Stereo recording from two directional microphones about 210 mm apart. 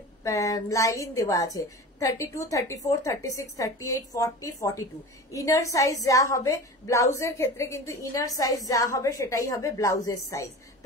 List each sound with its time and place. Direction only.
0.2 s a woman's voice: 15° left (ahead or behind)